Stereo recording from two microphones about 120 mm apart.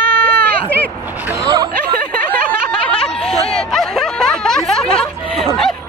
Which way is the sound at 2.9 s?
5° left (ahead or behind).